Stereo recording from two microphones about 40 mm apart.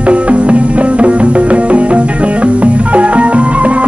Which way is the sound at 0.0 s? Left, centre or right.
Right.